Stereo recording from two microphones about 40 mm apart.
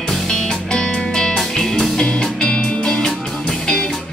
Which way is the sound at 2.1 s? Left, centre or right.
Left.